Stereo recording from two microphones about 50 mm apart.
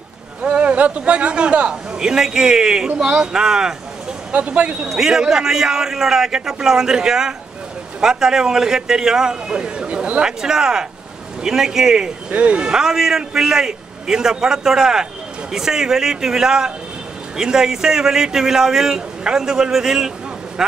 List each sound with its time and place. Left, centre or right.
0.4 s a man's voice: right
4.3 s speech: right
4.9 s a man's voice: centre
10.2 s a man's voice: centre
12.3 s speech: right
12.7 s a man's voice: centre